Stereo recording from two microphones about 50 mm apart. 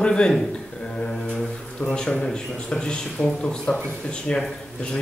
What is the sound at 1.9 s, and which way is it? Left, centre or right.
A man's voice, centre.